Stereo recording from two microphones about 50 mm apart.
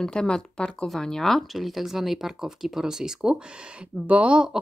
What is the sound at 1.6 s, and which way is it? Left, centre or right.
Speech, centre.